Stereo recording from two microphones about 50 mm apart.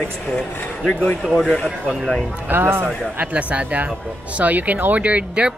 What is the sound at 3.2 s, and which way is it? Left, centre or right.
Speech, right.